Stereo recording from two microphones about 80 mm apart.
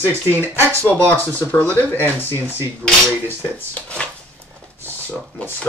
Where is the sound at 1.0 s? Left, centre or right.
Centre.